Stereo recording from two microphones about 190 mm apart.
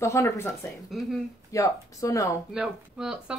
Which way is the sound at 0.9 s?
Centre (ahead or behind).